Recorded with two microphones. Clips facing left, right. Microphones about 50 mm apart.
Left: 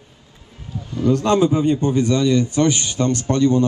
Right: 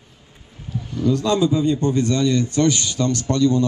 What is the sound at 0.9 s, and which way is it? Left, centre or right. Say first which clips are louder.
Speech: left 3 dB; left.